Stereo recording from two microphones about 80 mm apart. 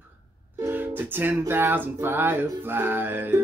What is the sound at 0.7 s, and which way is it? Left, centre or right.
Music, right.